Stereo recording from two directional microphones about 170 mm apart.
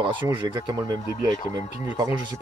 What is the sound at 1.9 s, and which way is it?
Speech, 20° right (ahead or behind).